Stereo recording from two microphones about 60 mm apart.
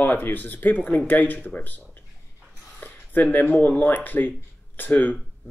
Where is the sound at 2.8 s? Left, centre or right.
Left.